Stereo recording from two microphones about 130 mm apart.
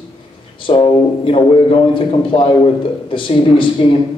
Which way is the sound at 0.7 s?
40° left (ahead or behind).